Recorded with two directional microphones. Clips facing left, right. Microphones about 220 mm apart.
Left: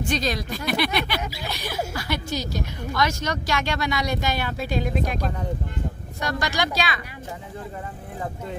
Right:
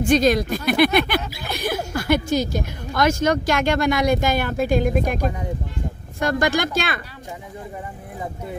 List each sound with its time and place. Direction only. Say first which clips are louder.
0.1 s speech: right 11 dB; 50° right (ahead or behind)